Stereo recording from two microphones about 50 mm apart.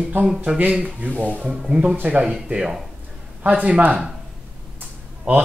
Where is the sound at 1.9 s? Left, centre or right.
Right.